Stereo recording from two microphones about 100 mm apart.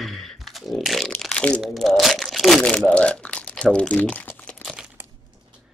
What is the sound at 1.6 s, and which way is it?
Crumpling, centre (ahead or behind).